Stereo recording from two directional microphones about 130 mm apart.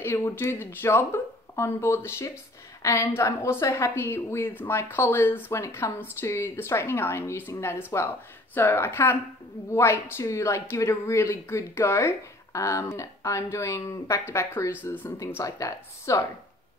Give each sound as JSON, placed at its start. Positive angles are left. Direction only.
{"t": 0.0, "sound": "a woman's voice", "side_deg": 20}